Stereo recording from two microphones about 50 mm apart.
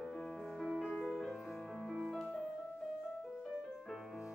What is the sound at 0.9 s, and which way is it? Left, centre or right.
Music, centre.